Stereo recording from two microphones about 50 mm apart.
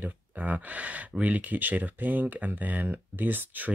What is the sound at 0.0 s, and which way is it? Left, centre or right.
Speech, right.